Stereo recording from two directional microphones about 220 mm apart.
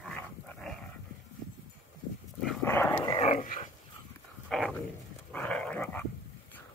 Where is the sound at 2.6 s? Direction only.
10° left (ahead or behind).